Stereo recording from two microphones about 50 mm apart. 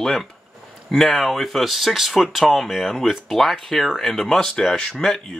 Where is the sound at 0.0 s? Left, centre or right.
Centre.